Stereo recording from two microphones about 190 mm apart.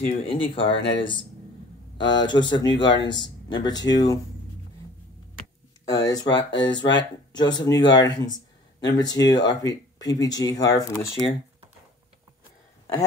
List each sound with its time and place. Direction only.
0.0 s speech: 30° left (ahead or behind)
5.9 s speech: 20° left (ahead or behind)